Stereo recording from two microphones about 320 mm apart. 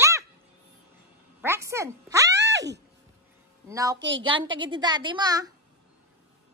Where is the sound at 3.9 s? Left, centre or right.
Right.